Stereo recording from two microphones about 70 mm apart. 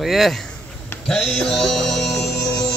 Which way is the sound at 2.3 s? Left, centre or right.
Left.